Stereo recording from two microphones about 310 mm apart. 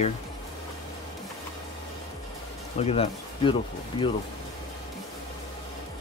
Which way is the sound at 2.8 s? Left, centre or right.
Centre.